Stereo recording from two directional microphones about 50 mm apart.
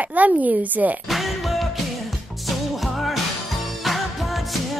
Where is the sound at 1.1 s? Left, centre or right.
Centre.